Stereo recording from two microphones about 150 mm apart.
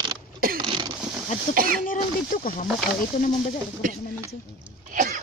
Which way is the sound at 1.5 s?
70° right (ahead or behind).